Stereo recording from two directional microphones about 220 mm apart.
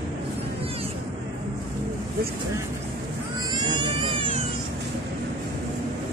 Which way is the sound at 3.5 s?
20° right (ahead or behind).